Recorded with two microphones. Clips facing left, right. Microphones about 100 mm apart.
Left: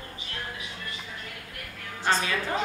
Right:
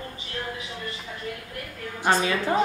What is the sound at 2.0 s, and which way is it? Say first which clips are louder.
Speech: right 4 dB; 15° right (ahead or behind).